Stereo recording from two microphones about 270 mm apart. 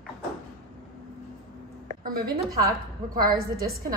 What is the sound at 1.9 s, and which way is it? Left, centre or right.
Speech, right.